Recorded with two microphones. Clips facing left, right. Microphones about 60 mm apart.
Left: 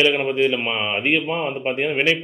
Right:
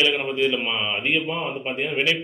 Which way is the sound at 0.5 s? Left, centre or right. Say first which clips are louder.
Left 2 dB; left.